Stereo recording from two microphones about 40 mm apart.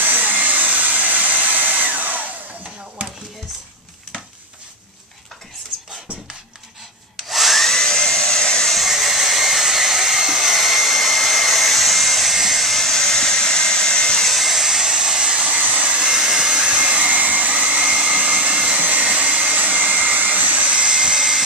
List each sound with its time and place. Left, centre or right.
0.0 s hair dryer: right
7.2 s wood: centre
7.6 s a sound: centre
8.8 s hair dryer: centre
12.4 s a sound: centre
14.2 s a sound: centre
15.7 s hair dryer: right
16.1 s hair dryer: centre
16.6 s vacuum cleaner: right
17.8 s vacuum cleaner: right
18.8 s vacuum cleaner: right
19.1 s vacuum cleaner: right
19.5 s vacuum cleaner: right
20.6 s vacuum cleaner: right